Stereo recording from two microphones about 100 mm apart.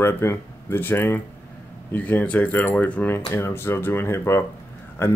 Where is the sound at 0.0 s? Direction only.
25° left (ahead or behind).